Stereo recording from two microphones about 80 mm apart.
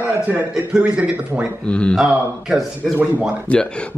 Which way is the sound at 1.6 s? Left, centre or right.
Centre.